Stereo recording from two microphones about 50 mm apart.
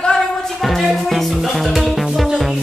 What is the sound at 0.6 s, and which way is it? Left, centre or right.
Music, centre.